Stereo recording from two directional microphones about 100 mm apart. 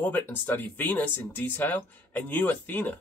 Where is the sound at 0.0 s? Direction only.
20° left (ahead or behind).